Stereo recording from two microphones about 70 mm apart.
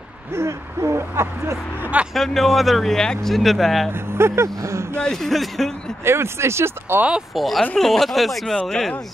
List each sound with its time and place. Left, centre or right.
0.3 s a sound: right
2.1 s speech: centre
3.9 s speech: right
5.0 s speech: centre
6.0 s a sound: right
7.0 s speech: centre
7.3 s speech: centre